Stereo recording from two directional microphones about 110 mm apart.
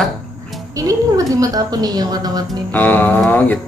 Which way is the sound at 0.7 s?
30° right (ahead or behind).